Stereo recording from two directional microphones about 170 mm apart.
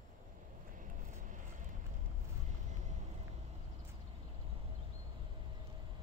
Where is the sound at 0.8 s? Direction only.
50° right (ahead or behind).